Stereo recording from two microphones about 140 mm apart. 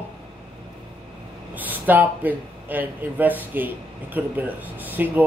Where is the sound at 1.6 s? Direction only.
10° right (ahead or behind).